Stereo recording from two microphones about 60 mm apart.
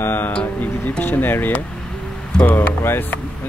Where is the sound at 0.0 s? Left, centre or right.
Left.